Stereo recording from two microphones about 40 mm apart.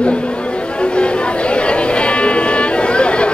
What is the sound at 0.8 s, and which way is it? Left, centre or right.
Music, left.